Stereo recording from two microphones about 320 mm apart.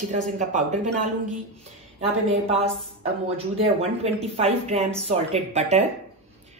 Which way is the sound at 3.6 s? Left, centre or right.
Centre.